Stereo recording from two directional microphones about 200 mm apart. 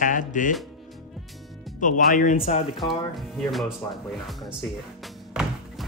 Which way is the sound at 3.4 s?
Centre (ahead or behind).